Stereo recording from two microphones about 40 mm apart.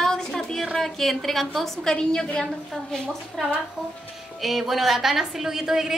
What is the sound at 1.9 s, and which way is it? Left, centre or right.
A woman's voice, centre.